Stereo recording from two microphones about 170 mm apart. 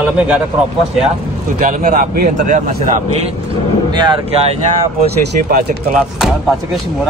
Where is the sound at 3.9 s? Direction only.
25° right (ahead or behind).